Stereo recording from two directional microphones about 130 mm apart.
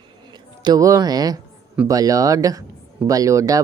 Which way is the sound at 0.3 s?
35° right (ahead or behind).